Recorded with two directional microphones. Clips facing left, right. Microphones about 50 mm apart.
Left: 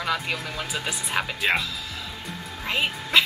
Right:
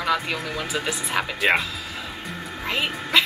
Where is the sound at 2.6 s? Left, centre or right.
Centre.